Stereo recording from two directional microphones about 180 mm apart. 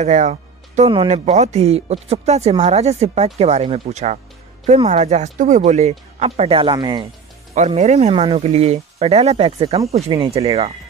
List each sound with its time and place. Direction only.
0.0 s speech: 40° right (ahead or behind); by 7.1 s 25° right (ahead or behind)
7.5 s speech: 40° right (ahead or behind)